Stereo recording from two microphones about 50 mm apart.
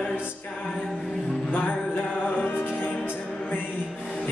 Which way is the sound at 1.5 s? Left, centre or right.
Left.